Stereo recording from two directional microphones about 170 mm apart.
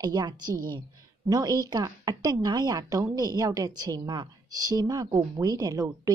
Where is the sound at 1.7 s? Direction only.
20° right (ahead or behind).